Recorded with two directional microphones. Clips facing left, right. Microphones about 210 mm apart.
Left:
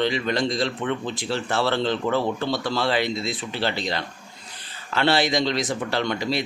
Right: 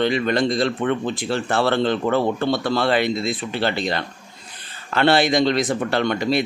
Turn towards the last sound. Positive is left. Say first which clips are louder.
# right 4 dB
turn(degrees=-55)  # may be behind; listen again after turning